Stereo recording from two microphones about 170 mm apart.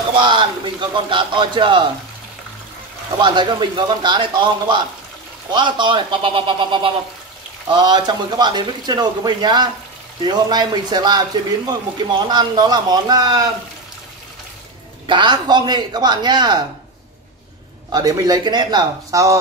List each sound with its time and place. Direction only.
0.2 s a man's voice: 30° right (ahead or behind)
3.2 s speech: 25° right (ahead or behind)
15.0 s speech: 25° right (ahead or behind)
17.9 s speech: 20° right (ahead or behind)